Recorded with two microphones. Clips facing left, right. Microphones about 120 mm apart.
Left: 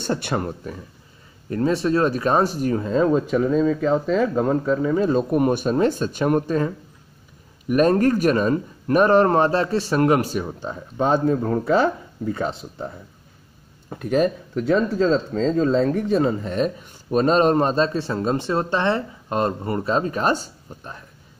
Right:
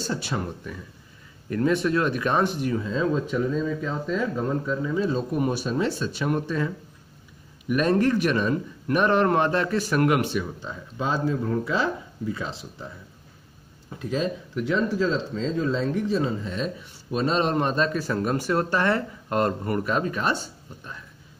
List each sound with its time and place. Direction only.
0.0 s speech: 60° left (ahead or behind)
1.5 s speech: 30° left (ahead or behind); by 12.5 s 55° left (ahead or behind)
13.8 s speech: 60° left (ahead or behind); by 21.0 s 45° left (ahead or behind)